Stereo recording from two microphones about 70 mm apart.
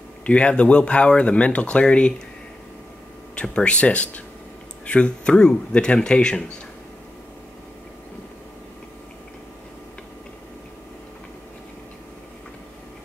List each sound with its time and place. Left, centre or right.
0.2 s speech: centre
3.3 s speech: centre